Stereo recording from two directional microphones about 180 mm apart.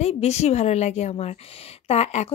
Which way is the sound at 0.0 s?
35° left (ahead or behind).